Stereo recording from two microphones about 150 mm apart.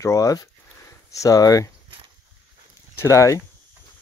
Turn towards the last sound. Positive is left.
turn(degrees=20)  # may be behind; listen again after turning